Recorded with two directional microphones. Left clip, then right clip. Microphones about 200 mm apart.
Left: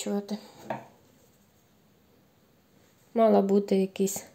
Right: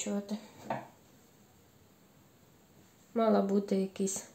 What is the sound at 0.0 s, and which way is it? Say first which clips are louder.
Speech: left 5 dB; 50° left (ahead or behind).